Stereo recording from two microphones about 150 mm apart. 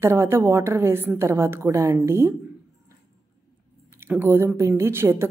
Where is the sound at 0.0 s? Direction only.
15° right (ahead or behind).